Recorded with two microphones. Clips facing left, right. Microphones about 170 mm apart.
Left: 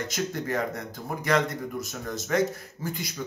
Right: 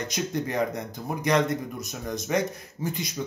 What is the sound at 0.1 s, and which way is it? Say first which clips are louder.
A man's voice: right 2 dB; 20° right (ahead or behind).